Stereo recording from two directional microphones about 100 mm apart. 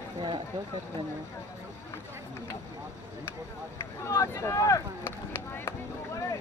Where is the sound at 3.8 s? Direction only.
30° left (ahead or behind).